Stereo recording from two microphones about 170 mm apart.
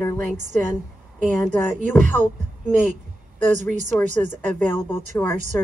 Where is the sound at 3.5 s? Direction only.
45° right (ahead or behind).